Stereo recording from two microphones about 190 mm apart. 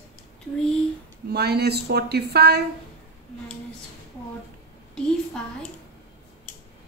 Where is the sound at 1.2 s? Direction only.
60° right (ahead or behind).